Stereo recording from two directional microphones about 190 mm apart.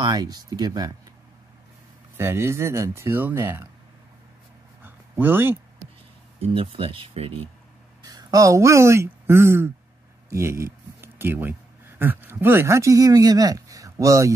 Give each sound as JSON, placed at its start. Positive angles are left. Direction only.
{"t": 0.0, "sound": "speech", "side_deg": -20}
{"t": 2.1, "sound": "speech", "side_deg": -15}
{"t": 4.8, "sound": "a sound", "side_deg": -10}
{"t": 6.4, "sound": "speech", "side_deg": -30}
{"t": 10.3, "sound": "a sound", "side_deg": -15}
{"t": 12.0, "sound": "speech", "side_deg": -10}